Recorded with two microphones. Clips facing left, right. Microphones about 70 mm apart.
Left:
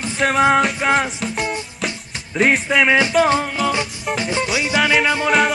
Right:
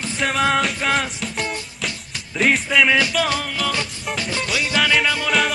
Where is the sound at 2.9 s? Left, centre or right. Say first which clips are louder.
Left 4 dB; left.